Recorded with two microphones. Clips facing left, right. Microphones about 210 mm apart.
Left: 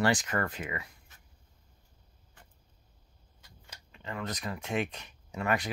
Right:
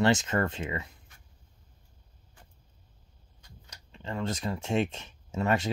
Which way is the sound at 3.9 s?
25° right (ahead or behind).